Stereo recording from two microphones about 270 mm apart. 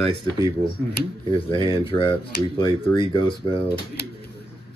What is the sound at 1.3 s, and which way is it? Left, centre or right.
Speech, centre.